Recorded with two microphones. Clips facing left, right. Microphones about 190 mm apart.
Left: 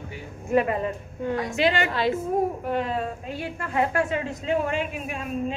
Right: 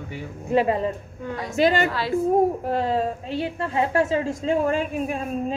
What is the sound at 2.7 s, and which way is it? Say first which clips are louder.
A woman's voice: right 3 dB; 35° right (ahead or behind).